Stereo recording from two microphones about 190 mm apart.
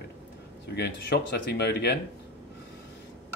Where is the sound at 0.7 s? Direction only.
60° left (ahead or behind).